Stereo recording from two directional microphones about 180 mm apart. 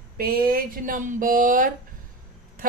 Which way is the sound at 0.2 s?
55° right (ahead or behind).